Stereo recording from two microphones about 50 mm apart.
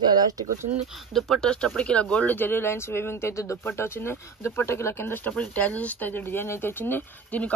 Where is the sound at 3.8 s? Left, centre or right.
Left.